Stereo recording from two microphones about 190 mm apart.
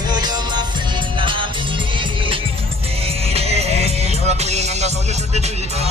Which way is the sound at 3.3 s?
35° right (ahead or behind).